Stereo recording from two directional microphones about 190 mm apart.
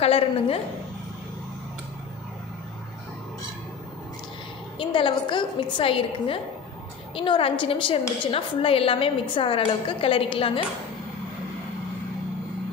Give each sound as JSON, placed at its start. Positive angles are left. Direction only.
{"t": 0.0, "sound": "a woman's voice", "side_deg": 30}
{"t": 4.7, "sound": "a woman's voice", "side_deg": 25}